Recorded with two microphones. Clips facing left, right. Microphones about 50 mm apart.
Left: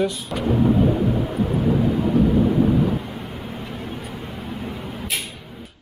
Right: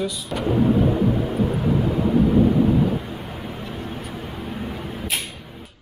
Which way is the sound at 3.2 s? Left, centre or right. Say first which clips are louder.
Even; centre.